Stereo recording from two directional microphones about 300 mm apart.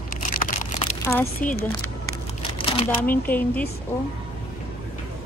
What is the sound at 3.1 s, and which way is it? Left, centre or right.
Speech, centre.